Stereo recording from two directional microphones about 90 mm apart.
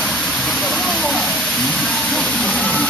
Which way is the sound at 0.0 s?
Centre (ahead or behind).